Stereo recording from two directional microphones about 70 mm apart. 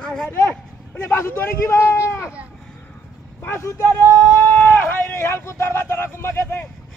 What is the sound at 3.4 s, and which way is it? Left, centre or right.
Speech, left.